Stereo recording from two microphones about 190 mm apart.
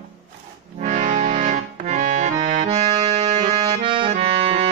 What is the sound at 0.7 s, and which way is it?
Accordion, 40° right (ahead or behind).